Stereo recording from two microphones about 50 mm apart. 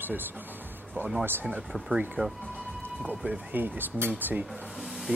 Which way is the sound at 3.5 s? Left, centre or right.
Right.